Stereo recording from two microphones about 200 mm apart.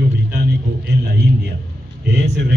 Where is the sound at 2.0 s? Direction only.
60° right (ahead or behind).